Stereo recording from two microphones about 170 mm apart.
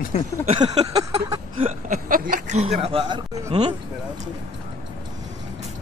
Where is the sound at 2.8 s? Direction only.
35° right (ahead or behind).